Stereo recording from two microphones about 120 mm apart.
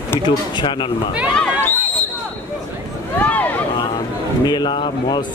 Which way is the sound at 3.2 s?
15° left (ahead or behind).